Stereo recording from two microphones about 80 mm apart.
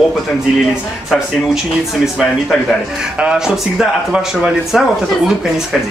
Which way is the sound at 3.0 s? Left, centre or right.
Centre.